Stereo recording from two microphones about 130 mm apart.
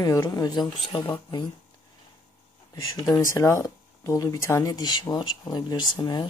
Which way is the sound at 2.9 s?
30° left (ahead or behind).